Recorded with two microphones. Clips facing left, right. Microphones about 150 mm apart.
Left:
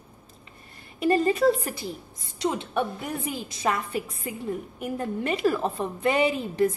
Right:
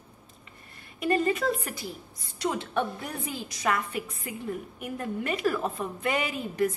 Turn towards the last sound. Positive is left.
turn(degrees=30)  # may be behind; listen again after turning